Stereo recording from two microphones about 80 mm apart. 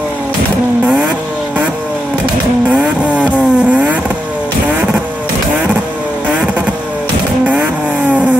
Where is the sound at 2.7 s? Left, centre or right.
Centre.